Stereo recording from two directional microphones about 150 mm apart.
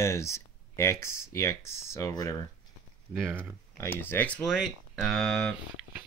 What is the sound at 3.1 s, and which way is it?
Speech, 10° right (ahead or behind).